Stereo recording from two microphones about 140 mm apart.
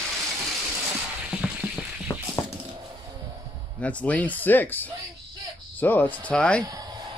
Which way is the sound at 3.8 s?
10° left (ahead or behind).